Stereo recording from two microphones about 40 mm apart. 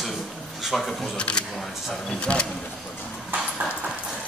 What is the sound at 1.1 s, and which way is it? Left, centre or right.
Speech, left.